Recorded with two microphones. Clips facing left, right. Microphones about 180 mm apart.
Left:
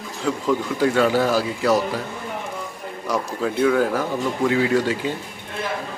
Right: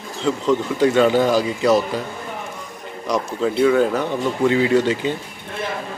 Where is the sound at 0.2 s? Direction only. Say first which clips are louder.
Right 3 dB; 5° left (ahead or behind).